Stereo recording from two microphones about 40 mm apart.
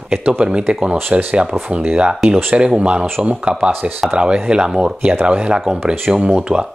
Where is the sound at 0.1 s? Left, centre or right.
Right.